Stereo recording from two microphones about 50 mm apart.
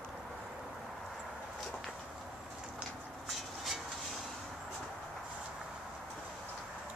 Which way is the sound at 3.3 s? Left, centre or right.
Centre.